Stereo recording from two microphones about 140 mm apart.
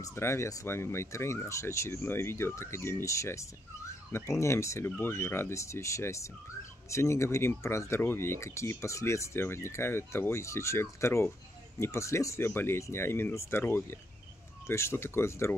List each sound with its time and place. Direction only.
0.0 s speech: 20° left (ahead or behind)